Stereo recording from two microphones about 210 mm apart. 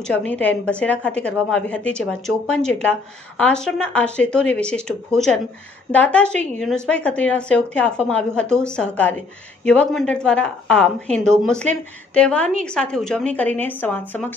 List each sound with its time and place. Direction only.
0.3 s a woman's voice: 5° left (ahead or behind)